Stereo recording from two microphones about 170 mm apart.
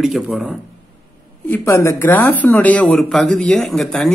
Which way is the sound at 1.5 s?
15° left (ahead or behind).